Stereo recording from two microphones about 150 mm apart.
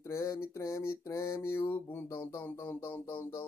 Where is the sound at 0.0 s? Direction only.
20° left (ahead or behind).